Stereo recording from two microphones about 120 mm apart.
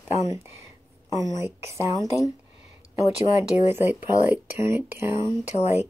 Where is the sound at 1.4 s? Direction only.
25° right (ahead or behind).